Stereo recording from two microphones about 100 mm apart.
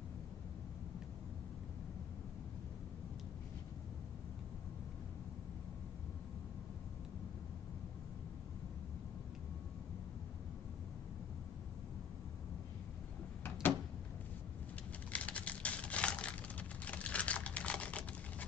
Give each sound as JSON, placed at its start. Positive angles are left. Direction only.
{"t": 13.4, "sound": "door", "side_deg": 20}
{"t": 15.1, "sound": "typing", "side_deg": 15}